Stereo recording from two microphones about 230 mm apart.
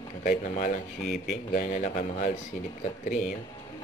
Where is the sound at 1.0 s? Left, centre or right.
Centre.